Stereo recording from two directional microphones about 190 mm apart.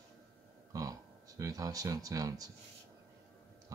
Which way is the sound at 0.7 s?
20° right (ahead or behind).